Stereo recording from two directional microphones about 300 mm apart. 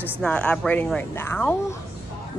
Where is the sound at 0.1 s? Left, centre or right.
Centre.